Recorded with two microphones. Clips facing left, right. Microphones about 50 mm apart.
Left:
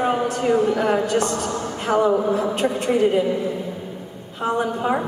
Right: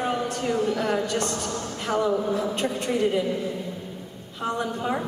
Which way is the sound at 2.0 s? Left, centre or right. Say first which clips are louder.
Left 5 dB; left.